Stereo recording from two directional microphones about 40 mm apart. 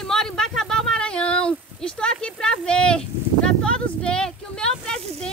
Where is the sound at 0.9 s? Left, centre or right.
Left.